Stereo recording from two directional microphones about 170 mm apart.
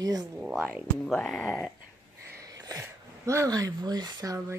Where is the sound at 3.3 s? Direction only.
20° right (ahead or behind).